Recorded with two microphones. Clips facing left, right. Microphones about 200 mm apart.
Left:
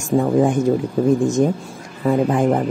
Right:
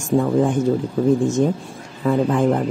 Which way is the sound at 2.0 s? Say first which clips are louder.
Left 1 dB; 20° left (ahead or behind).